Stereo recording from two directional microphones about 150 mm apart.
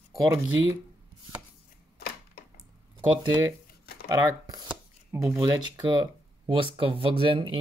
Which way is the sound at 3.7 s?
90° left.